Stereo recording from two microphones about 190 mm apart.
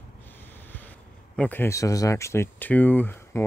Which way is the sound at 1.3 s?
10° left (ahead or behind).